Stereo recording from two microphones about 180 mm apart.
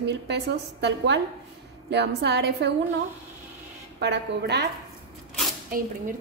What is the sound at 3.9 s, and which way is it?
Speech, 70° right (ahead or behind).